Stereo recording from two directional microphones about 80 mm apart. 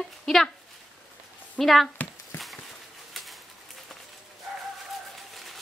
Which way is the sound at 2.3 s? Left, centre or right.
Left.